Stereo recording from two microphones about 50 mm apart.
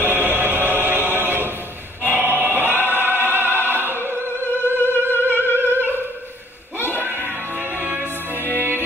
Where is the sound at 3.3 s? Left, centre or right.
Right.